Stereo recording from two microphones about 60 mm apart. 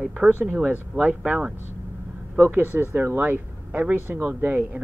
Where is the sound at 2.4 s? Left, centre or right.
Right.